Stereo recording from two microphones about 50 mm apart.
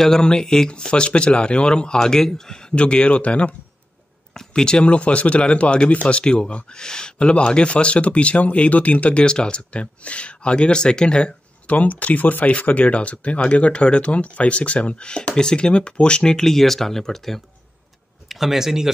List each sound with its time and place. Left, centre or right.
0.0 s speech: centre
2.7 s speech: left
4.3 s speech: centre
11.7 s speech: left; by 17.4 s centre
18.3 s speech: centre